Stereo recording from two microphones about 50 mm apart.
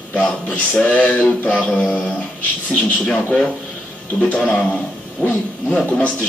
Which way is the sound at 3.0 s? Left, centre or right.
Left.